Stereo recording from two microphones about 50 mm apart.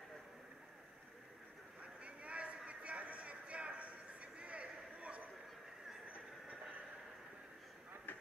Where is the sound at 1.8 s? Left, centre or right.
Right.